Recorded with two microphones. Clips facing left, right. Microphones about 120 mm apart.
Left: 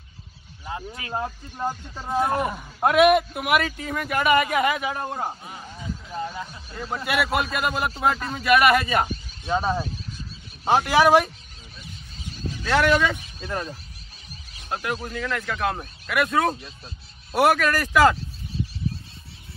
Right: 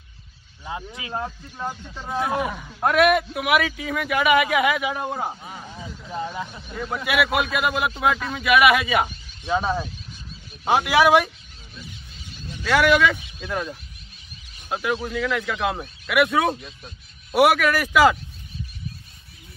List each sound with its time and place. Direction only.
0.7 s speech: 20° right (ahead or behind)
1.1 s speech: 15° left (ahead or behind)
2.5 s a man's voice: 10° left (ahead or behind); by 5.4 s 10° right (ahead or behind)
5.8 s vehicle: 30° right (ahead or behind)
6.7 s a man's voice: centre (ahead or behind)
12.3 s a sound: 40° left (ahead or behind)
12.6 s a man's voice: 5° right (ahead or behind)
14.7 s a man's voice: 5° right (ahead or behind)
18.1 s a sound: 30° left (ahead or behind)